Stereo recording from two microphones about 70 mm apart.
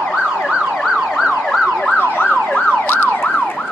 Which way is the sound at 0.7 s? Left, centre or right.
Centre.